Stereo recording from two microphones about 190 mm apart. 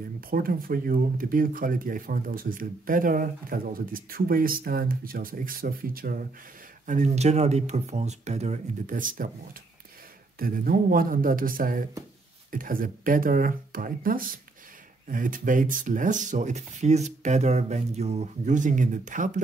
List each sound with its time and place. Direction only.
0.3 s speech: 50° right (ahead or behind)
6.9 s speech: 35° right (ahead or behind)
10.4 s speech: 50° right (ahead or behind)